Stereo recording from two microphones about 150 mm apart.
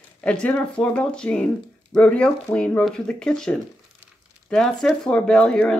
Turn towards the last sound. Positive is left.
turn(degrees=5)  # may be behind; listen again after turning